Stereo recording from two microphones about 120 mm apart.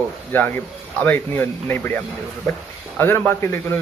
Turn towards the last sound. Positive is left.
turn(degrees=20)  # may be behind; listen again after turning